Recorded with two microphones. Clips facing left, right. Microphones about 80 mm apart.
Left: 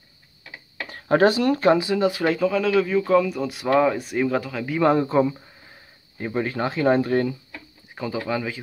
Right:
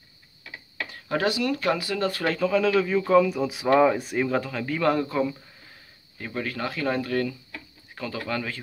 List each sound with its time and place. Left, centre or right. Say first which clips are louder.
0.8 s speech: left 8 dB; left; by 4.7 s centre
4.7 s speech: left 5 dB; left
7.5 s a sound: left 2 dB; centre